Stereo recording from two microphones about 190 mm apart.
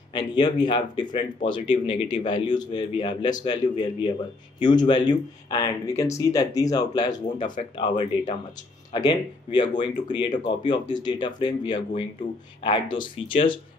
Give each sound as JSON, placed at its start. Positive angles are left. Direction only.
{"t": 0.1, "sound": "speech", "side_deg": 25}